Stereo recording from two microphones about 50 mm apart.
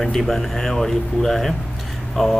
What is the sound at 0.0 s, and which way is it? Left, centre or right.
Speech, centre.